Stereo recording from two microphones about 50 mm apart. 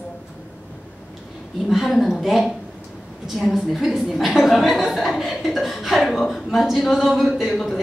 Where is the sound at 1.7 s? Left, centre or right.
Centre.